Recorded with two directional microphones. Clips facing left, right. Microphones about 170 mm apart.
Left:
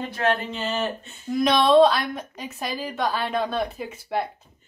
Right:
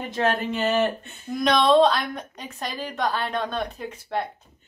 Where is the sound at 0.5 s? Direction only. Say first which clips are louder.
Right 5 dB; 60° right (ahead or behind).